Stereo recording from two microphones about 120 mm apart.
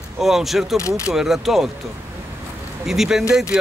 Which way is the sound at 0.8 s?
25° left (ahead or behind).